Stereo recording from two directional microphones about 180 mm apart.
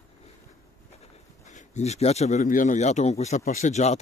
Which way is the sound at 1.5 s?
40° left (ahead or behind).